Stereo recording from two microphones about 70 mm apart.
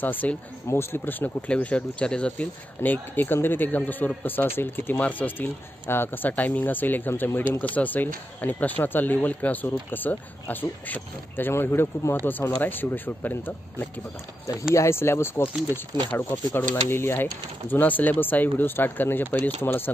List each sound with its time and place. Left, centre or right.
0.0 s speech: left
1.5 s speech: centre